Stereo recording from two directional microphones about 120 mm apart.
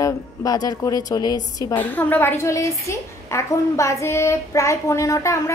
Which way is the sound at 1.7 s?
15° left (ahead or behind).